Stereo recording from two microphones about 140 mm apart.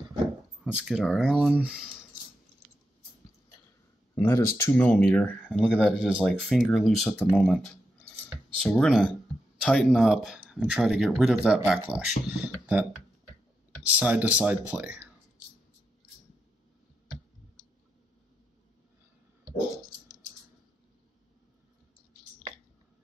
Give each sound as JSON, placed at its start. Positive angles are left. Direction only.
{"t": 0.7, "sound": "speech", "side_deg": -5}
{"t": 4.1, "sound": "speech", "side_deg": 20}
{"t": 5.7, "sound": "speech", "side_deg": -5}
{"t": 13.8, "sound": "speech", "side_deg": -10}
{"t": 19.4, "sound": "dog", "side_deg": -25}